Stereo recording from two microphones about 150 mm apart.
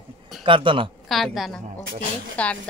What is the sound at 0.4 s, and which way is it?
Speech, 35° right (ahead or behind).